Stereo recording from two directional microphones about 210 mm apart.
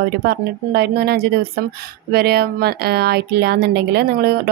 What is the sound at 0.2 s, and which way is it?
A woman's voice, 50° right (ahead or behind).